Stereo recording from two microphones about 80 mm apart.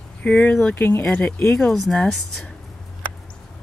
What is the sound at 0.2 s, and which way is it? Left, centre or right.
Speech, centre.